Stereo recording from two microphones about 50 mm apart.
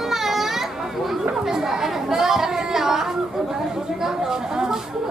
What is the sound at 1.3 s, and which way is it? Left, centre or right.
Chatter, centre.